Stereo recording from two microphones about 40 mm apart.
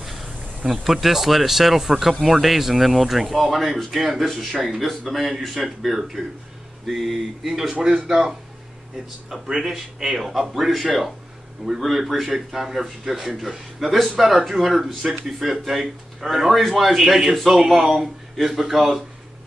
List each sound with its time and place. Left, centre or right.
0.0 s insect: centre
0.6 s speech: centre
1.0 s speech: centre
9.5 s speech: centre